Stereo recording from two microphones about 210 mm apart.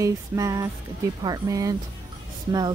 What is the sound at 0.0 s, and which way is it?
Speech, 15° right (ahead or behind).